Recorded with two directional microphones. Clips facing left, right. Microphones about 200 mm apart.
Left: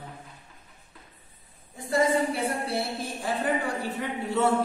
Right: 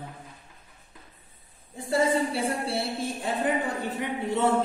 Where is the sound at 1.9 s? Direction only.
30° right (ahead or behind).